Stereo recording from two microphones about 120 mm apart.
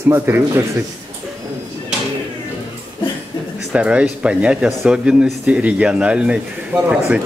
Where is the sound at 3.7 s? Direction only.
10° right (ahead or behind).